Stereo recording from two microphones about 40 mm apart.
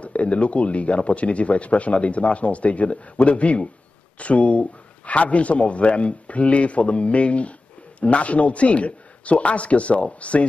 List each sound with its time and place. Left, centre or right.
0.0 s speech: left